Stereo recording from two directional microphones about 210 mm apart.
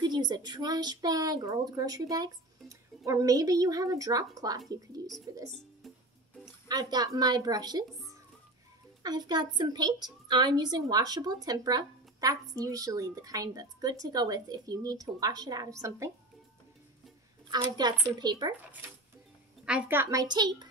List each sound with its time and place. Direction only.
0.0 s a woman's voice: 20° right (ahead or behind)
6.7 s a woman's voice: 20° right (ahead or behind)
17.5 s speech: 20° right (ahead or behind)
19.6 s a woman's voice: 10° right (ahead or behind)